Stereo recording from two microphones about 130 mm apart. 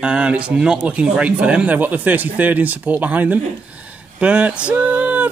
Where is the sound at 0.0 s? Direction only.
10° right (ahead or behind).